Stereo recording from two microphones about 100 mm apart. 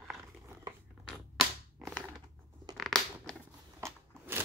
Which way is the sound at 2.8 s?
5° left (ahead or behind).